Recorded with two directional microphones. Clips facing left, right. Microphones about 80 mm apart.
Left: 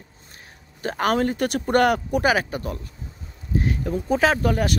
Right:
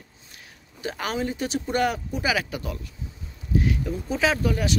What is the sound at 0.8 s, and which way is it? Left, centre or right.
Speech, left.